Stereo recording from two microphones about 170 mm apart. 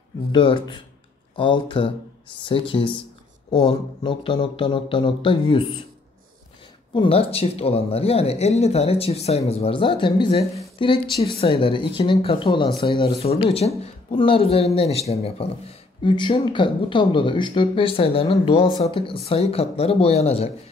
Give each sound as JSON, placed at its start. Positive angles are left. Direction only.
{"t": 0.3, "sound": "speech", "side_deg": 30}
{"t": 6.9, "sound": "speech", "side_deg": 30}